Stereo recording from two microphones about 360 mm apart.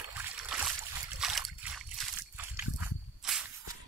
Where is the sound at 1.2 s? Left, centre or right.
Centre.